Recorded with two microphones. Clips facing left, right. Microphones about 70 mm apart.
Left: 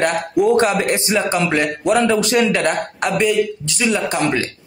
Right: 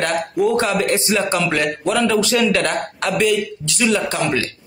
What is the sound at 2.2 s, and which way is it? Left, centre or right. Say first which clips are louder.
Speech: left 1 dB; left.